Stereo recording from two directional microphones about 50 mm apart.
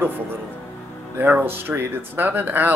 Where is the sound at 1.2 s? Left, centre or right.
Right.